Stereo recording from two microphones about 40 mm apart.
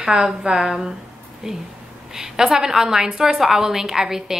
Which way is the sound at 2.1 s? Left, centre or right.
Centre.